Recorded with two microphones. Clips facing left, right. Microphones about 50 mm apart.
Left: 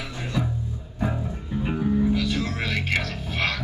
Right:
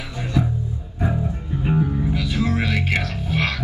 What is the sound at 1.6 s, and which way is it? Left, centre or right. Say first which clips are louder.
Music: right 1 dB; centre.